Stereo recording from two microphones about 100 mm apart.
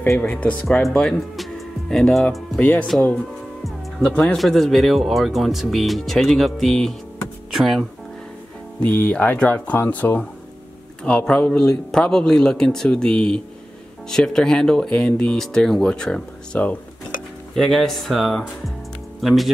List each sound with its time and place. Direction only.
0.2 s speech: 15° left (ahead or behind)
0.8 s speech: centre (ahead or behind)
2.6 s speech: 15° left (ahead or behind)
3.6 s music: 5° left (ahead or behind)
4.4 s speech: centre (ahead or behind)
8.7 s speech: 15° left (ahead or behind)